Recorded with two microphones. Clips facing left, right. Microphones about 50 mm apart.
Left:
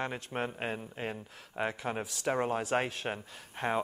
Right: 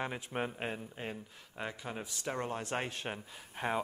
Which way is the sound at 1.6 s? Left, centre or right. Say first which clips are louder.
Left 7 dB; left.